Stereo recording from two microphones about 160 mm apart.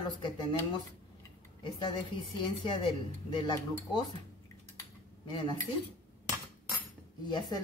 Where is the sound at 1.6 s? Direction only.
30° left (ahead or behind).